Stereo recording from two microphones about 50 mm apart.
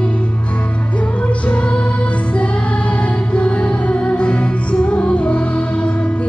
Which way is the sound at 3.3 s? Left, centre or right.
Left.